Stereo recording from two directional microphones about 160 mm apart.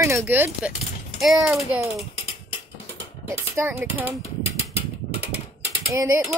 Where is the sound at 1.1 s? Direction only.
Centre (ahead or behind).